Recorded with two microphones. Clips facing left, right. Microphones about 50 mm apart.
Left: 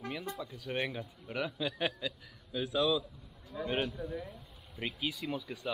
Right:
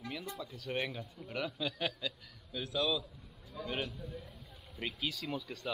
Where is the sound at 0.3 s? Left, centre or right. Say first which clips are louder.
Left 1 dB; centre.